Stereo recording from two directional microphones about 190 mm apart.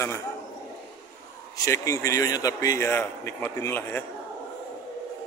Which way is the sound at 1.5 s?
15° left (ahead or behind).